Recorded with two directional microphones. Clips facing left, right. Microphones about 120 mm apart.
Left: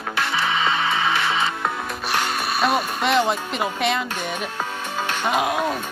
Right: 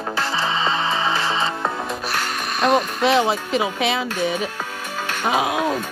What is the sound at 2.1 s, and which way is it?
Speech, 10° left (ahead or behind).